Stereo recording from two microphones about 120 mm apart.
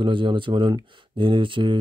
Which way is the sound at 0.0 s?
45° right (ahead or behind).